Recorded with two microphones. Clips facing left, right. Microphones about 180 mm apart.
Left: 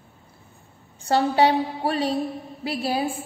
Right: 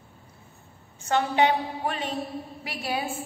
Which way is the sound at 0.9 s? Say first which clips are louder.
Left 3 dB; 35° left (ahead or behind).